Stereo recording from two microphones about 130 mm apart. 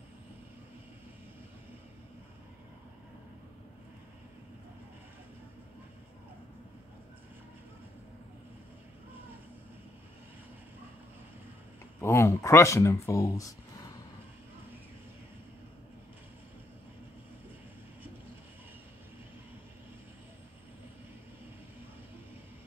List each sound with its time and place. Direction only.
12.0 s speech: 20° left (ahead or behind)